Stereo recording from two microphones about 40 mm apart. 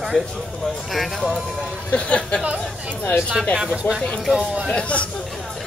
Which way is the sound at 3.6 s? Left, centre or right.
Centre.